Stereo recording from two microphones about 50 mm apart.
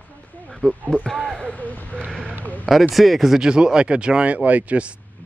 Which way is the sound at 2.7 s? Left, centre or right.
Centre.